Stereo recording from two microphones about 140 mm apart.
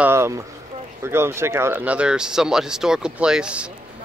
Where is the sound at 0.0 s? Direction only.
20° right (ahead or behind).